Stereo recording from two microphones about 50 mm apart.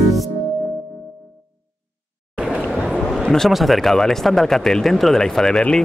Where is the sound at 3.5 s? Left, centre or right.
Centre.